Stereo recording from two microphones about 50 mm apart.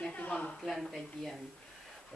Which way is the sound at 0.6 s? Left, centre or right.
Centre.